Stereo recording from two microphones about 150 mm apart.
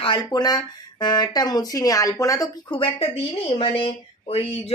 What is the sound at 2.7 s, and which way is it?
Speech, 35° left (ahead or behind).